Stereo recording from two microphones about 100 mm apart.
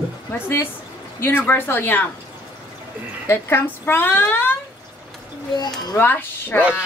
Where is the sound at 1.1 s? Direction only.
25° left (ahead or behind).